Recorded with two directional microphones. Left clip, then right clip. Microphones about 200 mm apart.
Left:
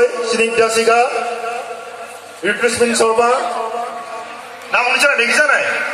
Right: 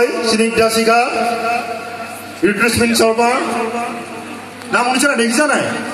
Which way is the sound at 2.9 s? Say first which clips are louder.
Right 1 dB; 25° right (ahead or behind).